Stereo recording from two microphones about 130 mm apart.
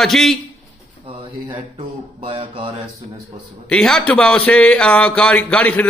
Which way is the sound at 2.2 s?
40° right (ahead or behind).